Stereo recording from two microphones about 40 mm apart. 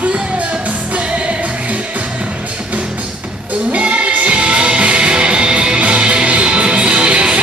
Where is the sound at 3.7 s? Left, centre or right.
Right.